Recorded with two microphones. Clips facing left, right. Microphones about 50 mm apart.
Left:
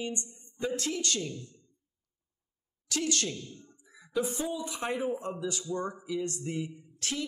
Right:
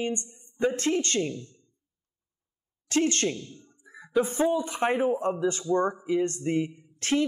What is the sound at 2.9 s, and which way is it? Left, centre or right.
Speech, right.